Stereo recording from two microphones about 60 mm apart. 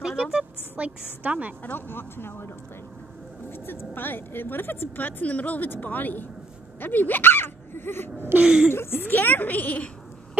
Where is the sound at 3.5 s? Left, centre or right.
Left.